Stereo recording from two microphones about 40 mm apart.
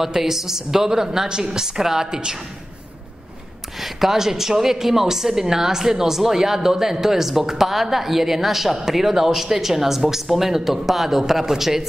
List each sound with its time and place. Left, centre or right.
0.0 s a woman's voice: centre
3.8 s a woman's voice: centre